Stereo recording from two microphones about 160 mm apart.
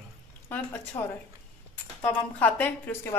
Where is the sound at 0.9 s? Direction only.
20° left (ahead or behind).